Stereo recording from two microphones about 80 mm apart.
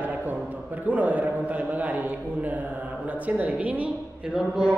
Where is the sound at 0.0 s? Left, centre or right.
Right.